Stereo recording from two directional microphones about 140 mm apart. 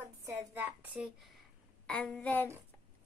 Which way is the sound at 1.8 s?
10° left (ahead or behind).